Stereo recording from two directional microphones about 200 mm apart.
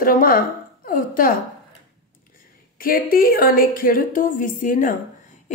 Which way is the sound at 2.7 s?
45° left (ahead or behind).